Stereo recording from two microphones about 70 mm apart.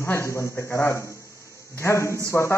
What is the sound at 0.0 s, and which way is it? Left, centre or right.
A man's voice, left.